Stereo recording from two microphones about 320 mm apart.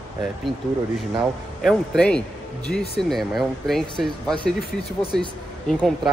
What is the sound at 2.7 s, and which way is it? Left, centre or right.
Speech, left.